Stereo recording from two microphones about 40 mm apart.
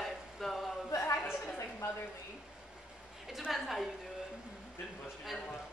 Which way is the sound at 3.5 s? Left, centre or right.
Centre.